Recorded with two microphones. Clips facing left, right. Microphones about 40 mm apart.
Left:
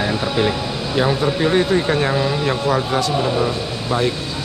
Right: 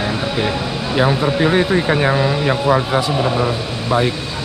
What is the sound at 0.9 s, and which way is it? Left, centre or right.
Speech, centre.